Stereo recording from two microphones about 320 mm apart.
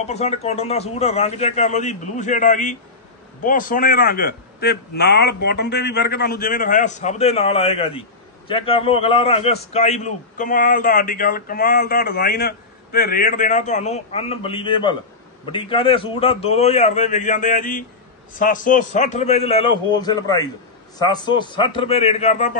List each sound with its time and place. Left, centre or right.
0.0 s a man's voice: centre